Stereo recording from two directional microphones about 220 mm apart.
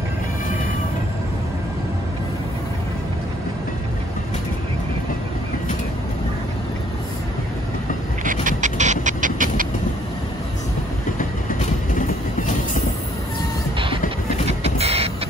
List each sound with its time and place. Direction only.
8.2 s dog: 35° right (ahead or behind)
11.1 s vehicle: 35° left (ahead or behind)
14.5 s vehicle: 30° right (ahead or behind)